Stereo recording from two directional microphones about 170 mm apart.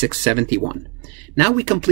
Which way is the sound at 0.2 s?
50° right (ahead or behind).